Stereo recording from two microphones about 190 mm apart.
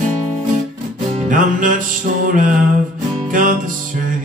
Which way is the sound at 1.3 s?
45° right (ahead or behind).